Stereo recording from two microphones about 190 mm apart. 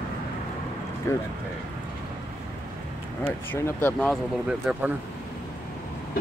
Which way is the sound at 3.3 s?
10° left (ahead or behind).